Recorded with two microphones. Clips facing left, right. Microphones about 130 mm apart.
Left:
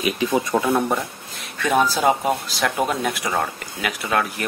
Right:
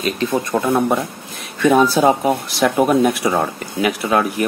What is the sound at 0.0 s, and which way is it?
Speech, 5° left (ahead or behind).